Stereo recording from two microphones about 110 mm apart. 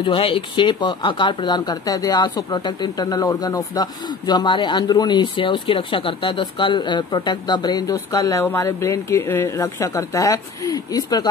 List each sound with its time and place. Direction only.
0.0 s speech: 50° left (ahead or behind); by 11.2 s 35° left (ahead or behind)